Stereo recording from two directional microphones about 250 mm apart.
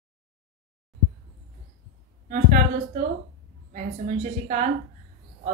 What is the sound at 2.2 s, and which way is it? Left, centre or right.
A woman's voice, right.